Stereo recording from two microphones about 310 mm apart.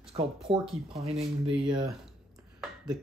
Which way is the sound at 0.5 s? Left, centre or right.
Centre.